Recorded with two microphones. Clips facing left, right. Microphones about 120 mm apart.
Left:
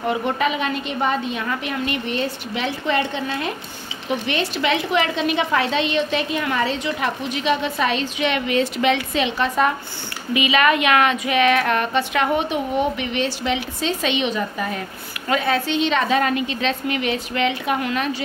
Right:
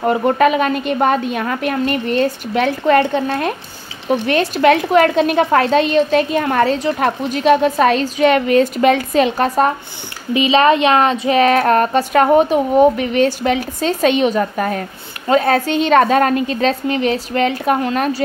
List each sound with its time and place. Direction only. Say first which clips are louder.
0.0 s a woman's voice: right 8 dB; 45° right (ahead or behind)
10.3 s a woman's voice: right 6 dB; 30° right (ahead or behind)